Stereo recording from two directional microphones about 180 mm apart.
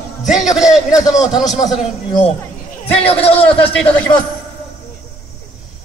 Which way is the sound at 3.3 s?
10° left (ahead or behind).